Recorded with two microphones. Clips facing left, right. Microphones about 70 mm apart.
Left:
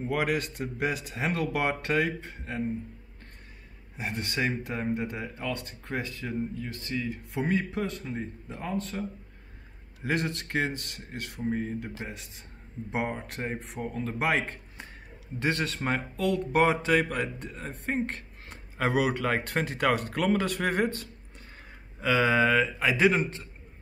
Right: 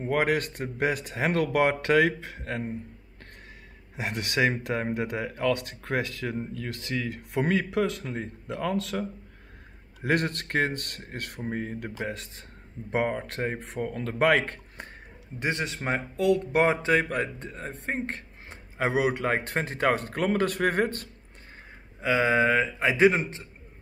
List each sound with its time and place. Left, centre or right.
0.0 s speech: right
3.9 s speech: right
10.0 s a man's voice: right
12.9 s a man's voice: right
15.3 s a man's voice: centre; by 21.1 s right
22.0 s a man's voice: right